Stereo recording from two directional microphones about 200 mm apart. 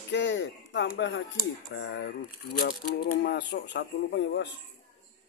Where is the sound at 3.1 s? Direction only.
55° left (ahead or behind).